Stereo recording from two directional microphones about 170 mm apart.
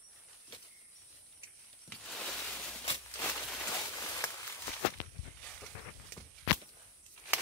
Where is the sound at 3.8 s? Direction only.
20° left (ahead or behind).